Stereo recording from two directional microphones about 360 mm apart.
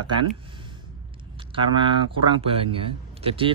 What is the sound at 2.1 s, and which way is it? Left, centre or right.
Speech, centre.